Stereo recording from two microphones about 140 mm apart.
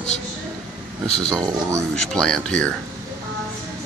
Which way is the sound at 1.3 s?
25° right (ahead or behind).